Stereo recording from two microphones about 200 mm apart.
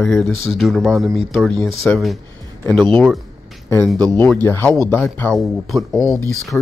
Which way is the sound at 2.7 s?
20° right (ahead or behind).